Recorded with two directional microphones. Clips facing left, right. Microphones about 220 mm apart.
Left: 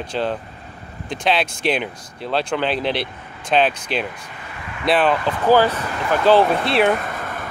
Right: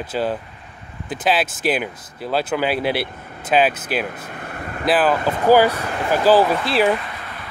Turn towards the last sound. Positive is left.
turn(degrees=50)  # may be behind; listen again after turning